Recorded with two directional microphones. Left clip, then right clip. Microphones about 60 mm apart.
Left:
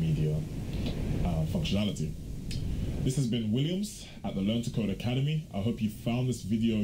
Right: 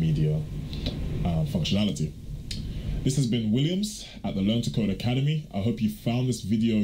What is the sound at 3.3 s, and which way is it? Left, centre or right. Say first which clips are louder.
Speech: right 5 dB; centre.